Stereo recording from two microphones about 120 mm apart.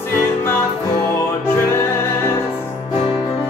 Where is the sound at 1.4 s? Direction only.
20° left (ahead or behind).